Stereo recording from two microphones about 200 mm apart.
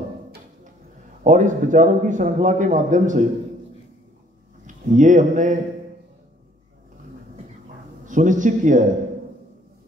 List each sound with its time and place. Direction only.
1.2 s a man's voice: 40° right (ahead or behind)
4.6 s speech: 40° right (ahead or behind)
8.0 s a man's voice: 40° right (ahead or behind)